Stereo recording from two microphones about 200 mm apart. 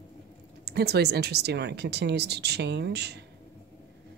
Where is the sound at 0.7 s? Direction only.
55° right (ahead or behind).